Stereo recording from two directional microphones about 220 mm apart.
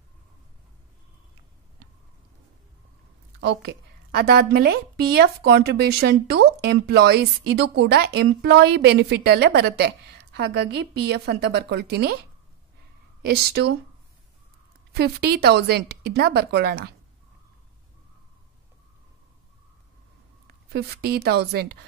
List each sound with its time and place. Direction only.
3.3 s a woman's voice: 50° right (ahead or behind)
13.2 s a woman's voice: 45° right (ahead or behind)
14.9 s a woman's voice: 45° right (ahead or behind)
20.7 s a woman's voice: 45° right (ahead or behind)